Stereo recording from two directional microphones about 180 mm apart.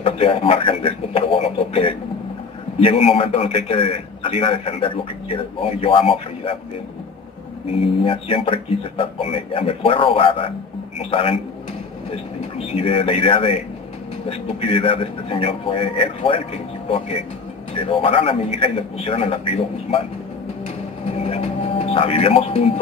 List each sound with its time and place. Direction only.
0.0 s a man's voice: 30° left (ahead or behind)
7.7 s a man's voice: 30° left (ahead or behind)
14.6 s a man's voice: 30° left (ahead or behind)
17.7 s a man's voice: 30° left (ahead or behind)
21.2 s speech: 35° left (ahead or behind)